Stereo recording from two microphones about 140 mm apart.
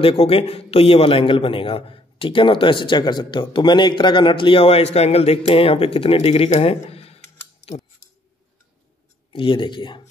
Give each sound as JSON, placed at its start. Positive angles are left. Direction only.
{"t": 0.0, "sound": "a man's voice", "side_deg": 40}
{"t": 9.3, "sound": "a man's voice", "side_deg": 35}